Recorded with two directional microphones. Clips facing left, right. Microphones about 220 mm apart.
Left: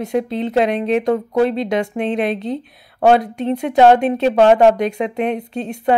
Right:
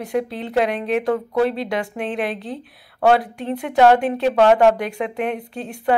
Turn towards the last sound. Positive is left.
turn(degrees=20)  # may be behind; listen again after turning